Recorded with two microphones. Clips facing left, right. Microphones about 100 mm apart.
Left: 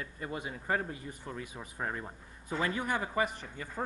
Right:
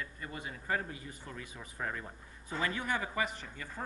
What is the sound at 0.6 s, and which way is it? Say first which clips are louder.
Speech: left 2 dB; 35° left (ahead or behind).